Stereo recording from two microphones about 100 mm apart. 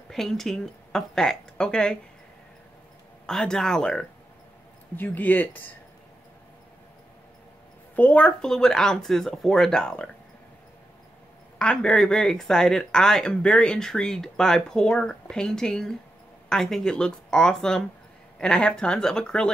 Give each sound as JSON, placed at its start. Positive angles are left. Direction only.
{"t": 0.1, "sound": "speech", "side_deg": 5}
{"t": 3.3, "sound": "speech", "side_deg": 5}
{"t": 4.9, "sound": "speech", "side_deg": 20}
{"t": 7.9, "sound": "speech", "side_deg": 15}
{"t": 11.5, "sound": "speech", "side_deg": 10}